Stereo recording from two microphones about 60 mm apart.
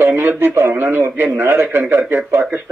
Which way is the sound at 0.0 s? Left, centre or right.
Right.